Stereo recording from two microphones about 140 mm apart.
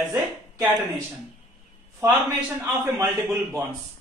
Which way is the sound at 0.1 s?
20° right (ahead or behind).